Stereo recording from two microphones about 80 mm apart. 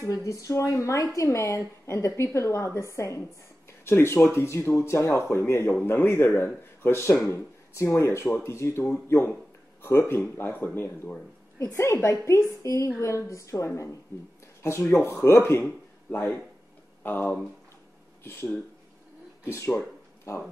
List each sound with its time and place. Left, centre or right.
0.0 s a man's voice: left